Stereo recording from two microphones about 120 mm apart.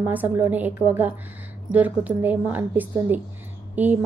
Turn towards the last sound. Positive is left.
turn(degrees=-15)  # may be behind; listen again after turning